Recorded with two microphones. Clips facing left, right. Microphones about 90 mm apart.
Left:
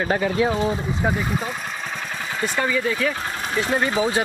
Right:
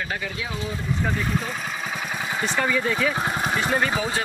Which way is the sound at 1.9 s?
5° right (ahead or behind).